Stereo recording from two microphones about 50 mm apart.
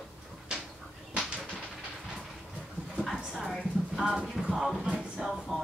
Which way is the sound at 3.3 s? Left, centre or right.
Centre.